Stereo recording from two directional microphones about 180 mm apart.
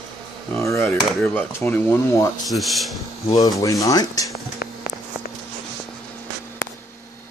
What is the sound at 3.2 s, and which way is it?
Speech, 20° left (ahead or behind).